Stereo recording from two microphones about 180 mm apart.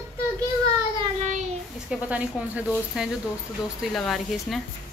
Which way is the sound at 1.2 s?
40° right (ahead or behind).